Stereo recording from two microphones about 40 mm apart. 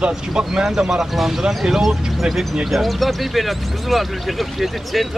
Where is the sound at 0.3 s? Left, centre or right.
Centre.